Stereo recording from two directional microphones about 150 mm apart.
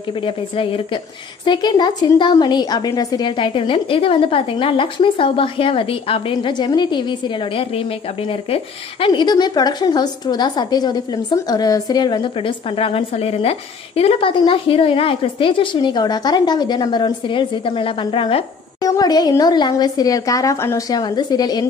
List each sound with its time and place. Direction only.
0.2 s a woman's voice: 35° left (ahead or behind)
9.0 s a woman's voice: 30° left (ahead or behind)
18.8 s a woman's voice: 25° left (ahead or behind)